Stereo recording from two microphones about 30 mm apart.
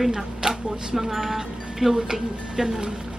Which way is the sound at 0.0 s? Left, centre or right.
Centre.